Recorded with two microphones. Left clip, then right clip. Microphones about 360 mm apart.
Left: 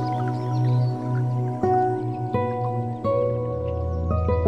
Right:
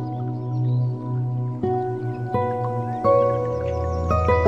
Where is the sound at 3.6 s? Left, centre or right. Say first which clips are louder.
Right 4 dB; right.